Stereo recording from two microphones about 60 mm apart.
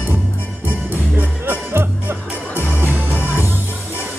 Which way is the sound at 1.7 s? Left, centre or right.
Right.